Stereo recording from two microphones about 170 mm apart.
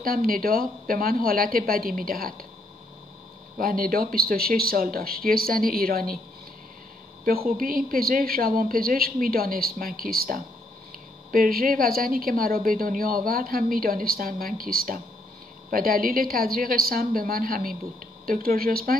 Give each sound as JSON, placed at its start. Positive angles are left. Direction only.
{"t": 0.0, "sound": "a woman's voice", "side_deg": -60}
{"t": 3.5, "sound": "a woman's voice", "side_deg": -55}
{"t": 7.2, "sound": "a woman's voice", "side_deg": -60}